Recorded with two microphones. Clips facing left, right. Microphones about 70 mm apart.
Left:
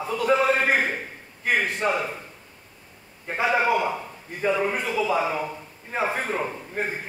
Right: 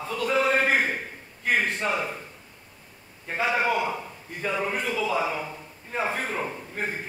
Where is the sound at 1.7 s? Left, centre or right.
Centre.